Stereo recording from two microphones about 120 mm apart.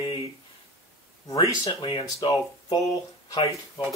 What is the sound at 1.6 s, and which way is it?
Speech, 35° left (ahead or behind).